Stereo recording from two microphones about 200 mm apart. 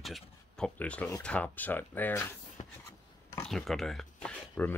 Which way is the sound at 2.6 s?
35° left (ahead or behind).